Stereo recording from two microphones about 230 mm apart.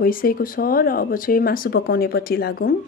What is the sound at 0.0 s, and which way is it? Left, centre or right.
Speech, left.